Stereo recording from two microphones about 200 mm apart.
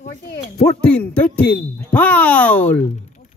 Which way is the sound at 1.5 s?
5° left (ahead or behind).